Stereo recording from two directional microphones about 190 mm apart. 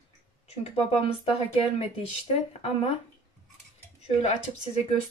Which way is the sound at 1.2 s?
30° left (ahead or behind).